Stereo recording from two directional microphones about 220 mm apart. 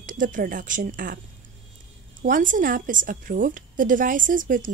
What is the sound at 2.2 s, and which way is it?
A woman's voice, 35° right (ahead or behind).